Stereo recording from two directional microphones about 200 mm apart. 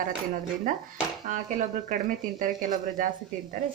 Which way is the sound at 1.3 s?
40° right (ahead or behind).